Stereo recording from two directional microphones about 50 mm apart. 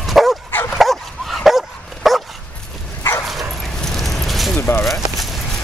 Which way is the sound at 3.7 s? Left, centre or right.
Centre.